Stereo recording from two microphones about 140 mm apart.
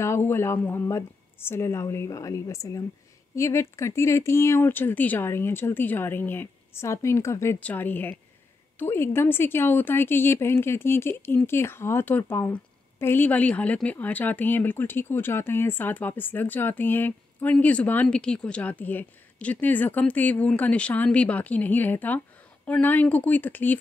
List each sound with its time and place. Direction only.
0.0 s a woman's voice: 20° left (ahead or behind)